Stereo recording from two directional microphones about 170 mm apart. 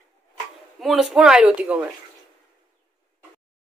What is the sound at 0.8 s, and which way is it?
Speech, centre (ahead or behind).